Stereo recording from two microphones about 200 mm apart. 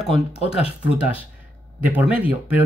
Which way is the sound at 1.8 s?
10° right (ahead or behind).